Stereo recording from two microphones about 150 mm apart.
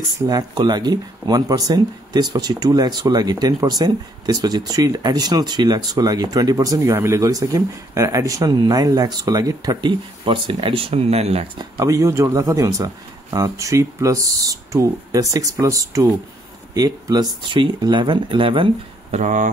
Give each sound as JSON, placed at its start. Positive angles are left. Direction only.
{"t": 0.3, "sound": "speech", "side_deg": -25}
{"t": 11.8, "sound": "speech", "side_deg": -20}
{"t": 19.1, "sound": "speech", "side_deg": -55}